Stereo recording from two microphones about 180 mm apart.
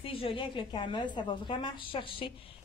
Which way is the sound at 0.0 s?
30° left (ahead or behind).